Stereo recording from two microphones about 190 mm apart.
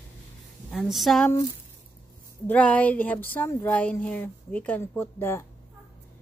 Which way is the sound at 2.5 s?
5° left (ahead or behind).